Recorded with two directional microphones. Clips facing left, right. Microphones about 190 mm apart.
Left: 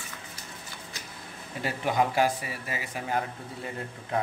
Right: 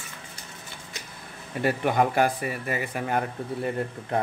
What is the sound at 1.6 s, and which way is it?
Speech, 55° right (ahead or behind).